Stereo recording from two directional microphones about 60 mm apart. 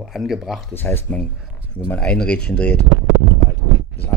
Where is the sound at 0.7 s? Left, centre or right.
Left.